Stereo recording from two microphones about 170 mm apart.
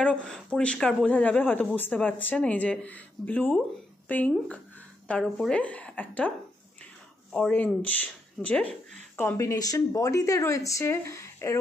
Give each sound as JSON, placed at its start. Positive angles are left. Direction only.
{"t": 0.0, "sound": "speech", "side_deg": 5}
{"t": 7.3, "sound": "speech", "side_deg": 10}